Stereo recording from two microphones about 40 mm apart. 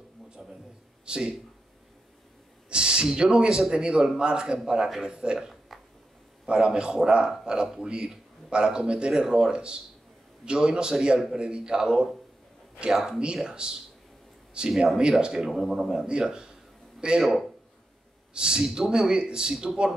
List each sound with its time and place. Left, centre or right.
0.3 s a sound: centre
1.0 s speech: right
2.7 s a sound: right
3.2 s a man's voice: right
5.4 s a sound: centre
6.4 s a man's voice: right
13.6 s a man's voice: right
15.3 s speech: centre
16.1 s speech: centre
17.2 s speech: centre
18.3 s a man's voice: right
19.5 s speech: centre